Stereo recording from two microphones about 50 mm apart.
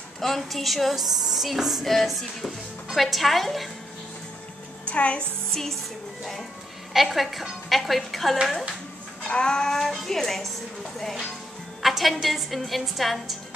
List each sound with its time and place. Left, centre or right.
0.2 s speech: centre
4.8 s a child's voice: left
5.5 s music: centre
6.9 s speech: centre
9.3 s a woman's voice: centre